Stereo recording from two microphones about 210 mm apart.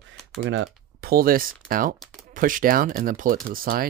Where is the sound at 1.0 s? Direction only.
45° right (ahead or behind).